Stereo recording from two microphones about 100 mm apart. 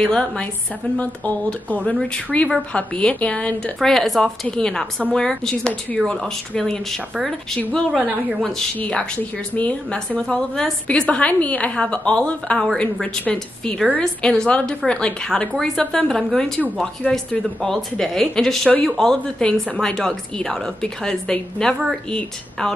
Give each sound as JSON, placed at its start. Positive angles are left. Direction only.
{"t": 0.0, "sound": "a woman's voice", "side_deg": 10}